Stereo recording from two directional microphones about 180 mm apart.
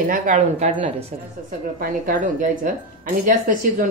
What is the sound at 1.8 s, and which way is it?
Speech, 50° right (ahead or behind).